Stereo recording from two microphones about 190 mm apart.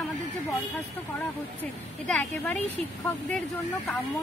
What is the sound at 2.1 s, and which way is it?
Speech, 5° left (ahead or behind).